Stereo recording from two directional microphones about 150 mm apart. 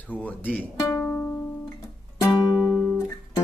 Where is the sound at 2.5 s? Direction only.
10° right (ahead or behind).